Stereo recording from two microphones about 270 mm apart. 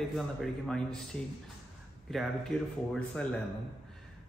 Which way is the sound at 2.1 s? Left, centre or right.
Centre.